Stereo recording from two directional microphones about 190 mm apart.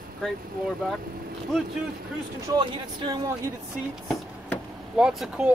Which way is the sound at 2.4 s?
25° right (ahead or behind).